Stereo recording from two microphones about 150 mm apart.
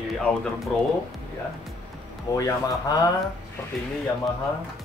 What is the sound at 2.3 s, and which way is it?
Speech, 25° left (ahead or behind).